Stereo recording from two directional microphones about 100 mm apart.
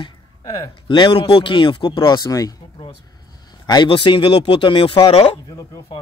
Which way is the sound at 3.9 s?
55° left (ahead or behind).